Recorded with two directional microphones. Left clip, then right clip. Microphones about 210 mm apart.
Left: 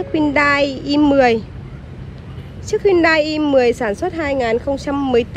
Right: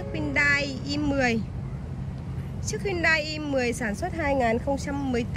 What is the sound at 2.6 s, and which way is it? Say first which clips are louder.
Speech: left 11 dB; 5° left (ahead or behind).